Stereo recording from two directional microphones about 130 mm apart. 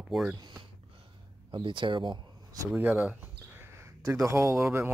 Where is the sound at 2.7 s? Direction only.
10° right (ahead or behind).